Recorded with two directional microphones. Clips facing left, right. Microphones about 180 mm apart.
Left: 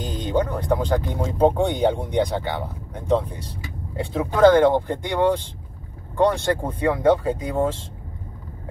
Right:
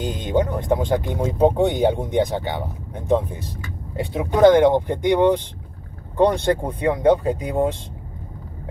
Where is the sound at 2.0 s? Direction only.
20° right (ahead or behind).